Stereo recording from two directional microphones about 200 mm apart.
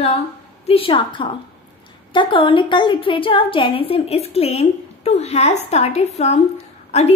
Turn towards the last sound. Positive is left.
turn(degrees=35)  # may be behind; listen again after turning